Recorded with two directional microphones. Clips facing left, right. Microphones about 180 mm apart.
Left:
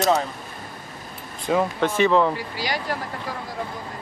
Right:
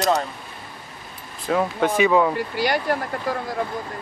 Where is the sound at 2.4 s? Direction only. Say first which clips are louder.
Right 6 dB; 55° right (ahead or behind).